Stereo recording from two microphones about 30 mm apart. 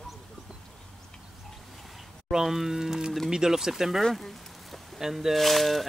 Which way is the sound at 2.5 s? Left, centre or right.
Centre.